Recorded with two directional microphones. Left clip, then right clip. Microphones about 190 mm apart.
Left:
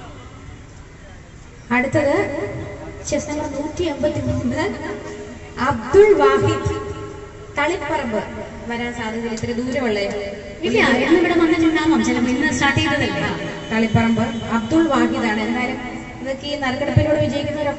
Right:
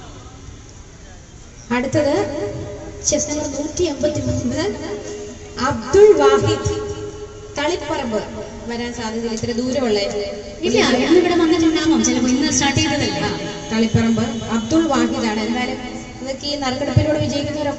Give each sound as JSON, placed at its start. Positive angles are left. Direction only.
{"t": 1.7, "sound": "a woman's voice", "side_deg": -20}